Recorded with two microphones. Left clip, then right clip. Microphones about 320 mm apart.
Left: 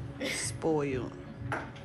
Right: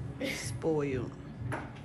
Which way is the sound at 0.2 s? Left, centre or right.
Centre.